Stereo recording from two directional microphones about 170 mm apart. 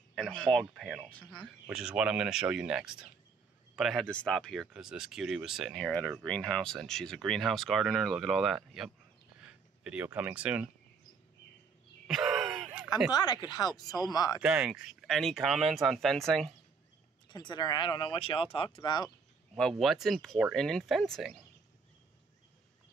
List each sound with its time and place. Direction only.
0.1 s speech: 5° left (ahead or behind)
12.1 s groan: centre (ahead or behind)
13.1 s speech: 25° left (ahead or behind)
14.4 s speech: 5° right (ahead or behind)
17.3 s speech: 25° left (ahead or behind)
19.0 s speech: centre (ahead or behind)